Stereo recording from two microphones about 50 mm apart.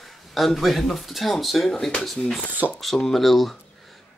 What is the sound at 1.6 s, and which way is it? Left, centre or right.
Speech, centre.